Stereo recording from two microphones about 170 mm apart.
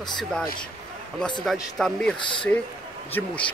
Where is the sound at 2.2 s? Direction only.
30° left (ahead or behind).